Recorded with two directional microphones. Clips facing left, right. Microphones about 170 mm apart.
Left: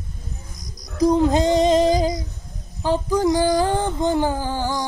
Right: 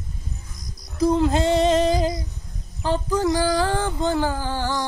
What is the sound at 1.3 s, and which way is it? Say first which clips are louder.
Female singing: left 2 dB; 15° left (ahead or behind).